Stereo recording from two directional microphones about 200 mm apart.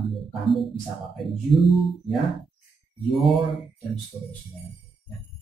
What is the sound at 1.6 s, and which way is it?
Speech, centre (ahead or behind).